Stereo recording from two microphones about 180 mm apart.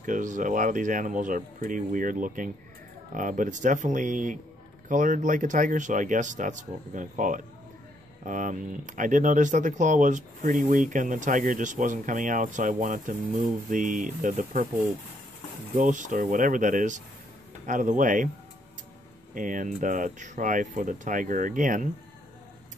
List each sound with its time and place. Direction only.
0.0 s speech: 45° right (ahead or behind)
15.7 s speech: 45° right (ahead or behind)
19.3 s speech: 45° right (ahead or behind)